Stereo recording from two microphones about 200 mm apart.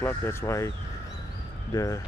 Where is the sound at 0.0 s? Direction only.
10° left (ahead or behind).